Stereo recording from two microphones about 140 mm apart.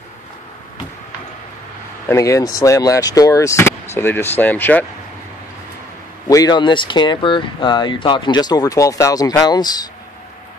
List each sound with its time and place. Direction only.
2.0 s speech: 20° left (ahead or behind)
6.2 s speech: 25° left (ahead or behind)